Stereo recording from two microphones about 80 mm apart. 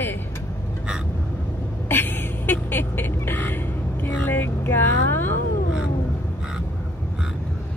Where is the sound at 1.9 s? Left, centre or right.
Left.